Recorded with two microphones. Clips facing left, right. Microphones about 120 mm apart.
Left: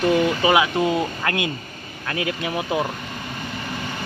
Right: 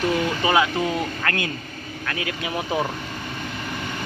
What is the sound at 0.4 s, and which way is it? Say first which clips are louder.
Speech: left 2 dB; 15° left (ahead or behind).